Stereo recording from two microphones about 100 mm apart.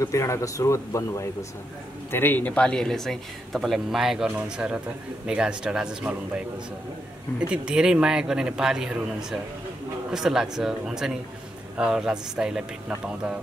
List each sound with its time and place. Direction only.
0.0 s a man's voice: 30° left (ahead or behind); by 13.4 s 10° right (ahead or behind)